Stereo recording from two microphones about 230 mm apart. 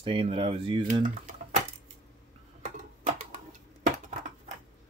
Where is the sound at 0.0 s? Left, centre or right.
Right.